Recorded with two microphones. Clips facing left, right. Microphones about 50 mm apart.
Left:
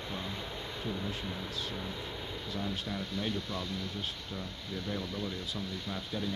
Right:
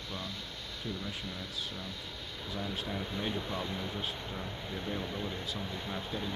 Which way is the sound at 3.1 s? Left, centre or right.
Right.